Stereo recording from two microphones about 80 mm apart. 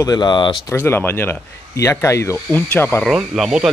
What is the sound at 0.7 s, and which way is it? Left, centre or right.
Speech, left.